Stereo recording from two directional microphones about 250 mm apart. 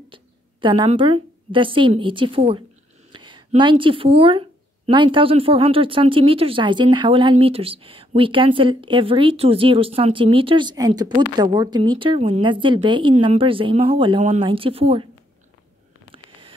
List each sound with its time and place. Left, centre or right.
0.1 s a woman's voice: centre